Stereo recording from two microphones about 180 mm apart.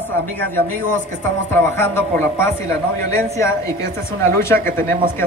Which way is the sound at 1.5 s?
15° left (ahead or behind).